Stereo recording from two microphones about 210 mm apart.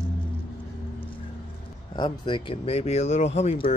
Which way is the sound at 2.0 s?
25° left (ahead or behind).